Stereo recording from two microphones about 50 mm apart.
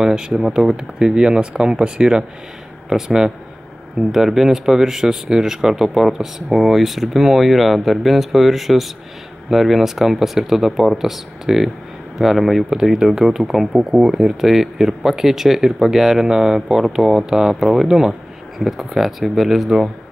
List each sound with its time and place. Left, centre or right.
0.0 s speech: centre